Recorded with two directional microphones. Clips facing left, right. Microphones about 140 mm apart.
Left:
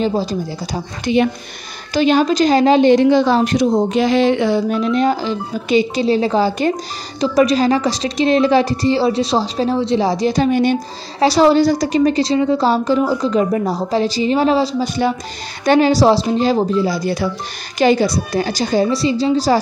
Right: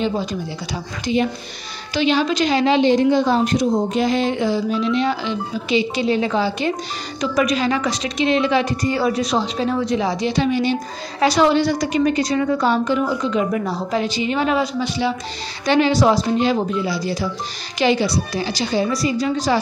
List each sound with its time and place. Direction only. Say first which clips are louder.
0.0 s a woman's voice: left 4 dB; 35° left (ahead or behind)
1.0 s speech: left 4 dB; 65° left (ahead or behind)
2.0 s a woman's voice: left 5 dB; 45° left (ahead or behind)
2.9 s a woman's voice: left 4 dB; 85° left; by 4.8 s 60° left (ahead or behind)
4.9 s a woman's voice: left 4 dB; 40° left (ahead or behind)
11.1 s a woman's voice: left 4 dB; 35° left (ahead or behind)
15.6 s a woman's voice: left 4 dB; 45° left (ahead or behind)
18.9 s a woman's voice: left 4 dB; 25° left (ahead or behind)